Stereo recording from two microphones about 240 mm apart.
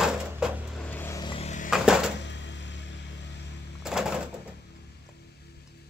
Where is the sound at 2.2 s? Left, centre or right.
Left.